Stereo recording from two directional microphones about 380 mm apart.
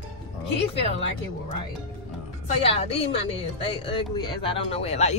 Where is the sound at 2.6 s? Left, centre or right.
Centre.